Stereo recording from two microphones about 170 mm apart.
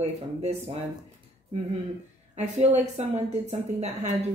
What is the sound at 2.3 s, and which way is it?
A woman's voice, 40° right (ahead or behind).